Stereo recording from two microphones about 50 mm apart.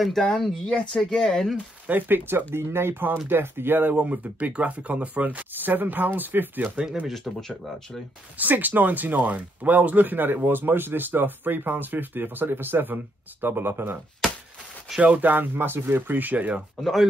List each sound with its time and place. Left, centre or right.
0.4 s speech: centre
1.9 s speech: right
3.9 s speech: right
7.3 s speech: centre
8.4 s speech: right
15.0 s speech: right